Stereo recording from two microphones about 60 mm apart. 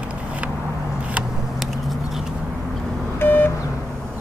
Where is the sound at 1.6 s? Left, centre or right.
Centre.